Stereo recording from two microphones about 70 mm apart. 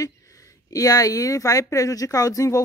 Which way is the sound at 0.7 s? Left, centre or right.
Left.